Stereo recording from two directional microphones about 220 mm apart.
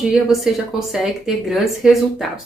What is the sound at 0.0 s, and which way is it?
Speech, centre (ahead or behind).